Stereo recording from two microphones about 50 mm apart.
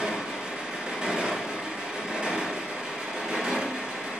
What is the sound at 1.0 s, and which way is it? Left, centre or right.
Vehicle, centre.